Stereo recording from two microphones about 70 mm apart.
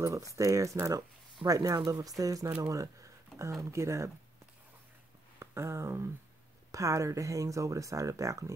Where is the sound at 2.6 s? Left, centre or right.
Right.